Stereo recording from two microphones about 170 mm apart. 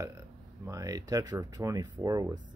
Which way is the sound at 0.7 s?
20° right (ahead or behind).